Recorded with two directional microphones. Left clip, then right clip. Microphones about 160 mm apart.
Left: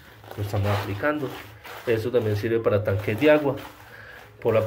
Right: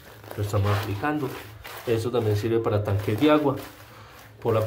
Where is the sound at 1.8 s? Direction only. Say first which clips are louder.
Left 2 dB; centre (ahead or behind).